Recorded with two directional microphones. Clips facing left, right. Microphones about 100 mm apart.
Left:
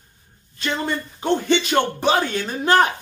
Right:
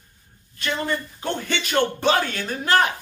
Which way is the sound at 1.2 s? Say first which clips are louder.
Left 7 dB; 20° left (ahead or behind).